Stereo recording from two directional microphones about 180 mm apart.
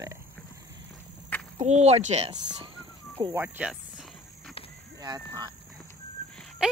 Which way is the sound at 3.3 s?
10° right (ahead or behind).